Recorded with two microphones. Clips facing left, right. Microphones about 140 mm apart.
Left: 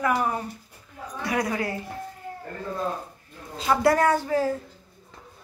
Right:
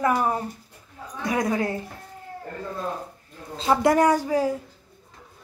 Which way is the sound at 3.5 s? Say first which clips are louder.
Right 2 dB; 25° right (ahead or behind).